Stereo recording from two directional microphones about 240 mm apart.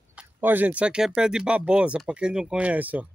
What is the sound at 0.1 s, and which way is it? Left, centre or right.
Speech, centre.